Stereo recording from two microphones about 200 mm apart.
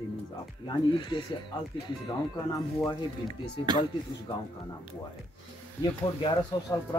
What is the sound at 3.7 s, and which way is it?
Speech, 20° right (ahead or behind).